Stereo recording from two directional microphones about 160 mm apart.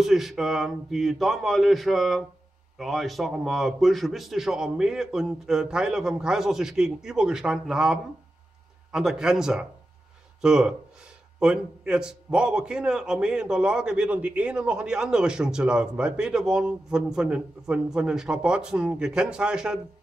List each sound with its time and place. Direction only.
0.0 s a man's voice: centre (ahead or behind)